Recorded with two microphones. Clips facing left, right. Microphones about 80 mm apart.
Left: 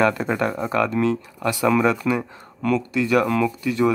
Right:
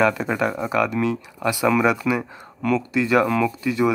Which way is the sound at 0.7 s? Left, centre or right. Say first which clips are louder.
Left 3 dB; centre.